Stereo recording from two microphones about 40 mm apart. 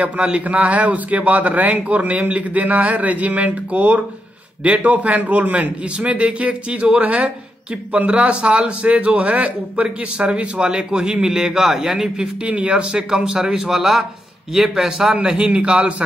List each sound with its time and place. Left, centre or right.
0.0 s a man's voice: right; by 12.3 s centre
12.4 s a man's voice: right; by 15.1 s centre
15.2 s a man's voice: right